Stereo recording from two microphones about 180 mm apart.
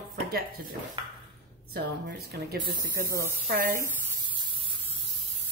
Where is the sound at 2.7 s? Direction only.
20° right (ahead or behind).